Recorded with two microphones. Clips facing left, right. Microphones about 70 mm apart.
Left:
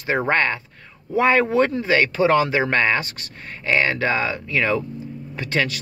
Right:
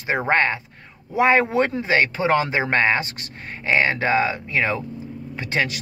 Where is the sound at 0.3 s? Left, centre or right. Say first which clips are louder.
Right 1 dB; centre.